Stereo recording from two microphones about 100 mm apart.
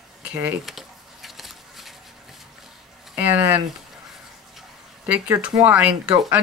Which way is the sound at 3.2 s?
20° right (ahead or behind).